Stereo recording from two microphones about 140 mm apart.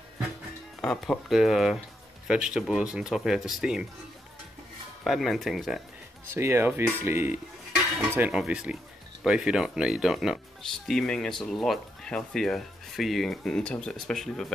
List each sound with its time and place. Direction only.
0.7 s speech: 5° left (ahead or behind)
5.0 s speech: centre (ahead or behind)
6.3 s speech: 15° right (ahead or behind); by 14.5 s centre (ahead or behind)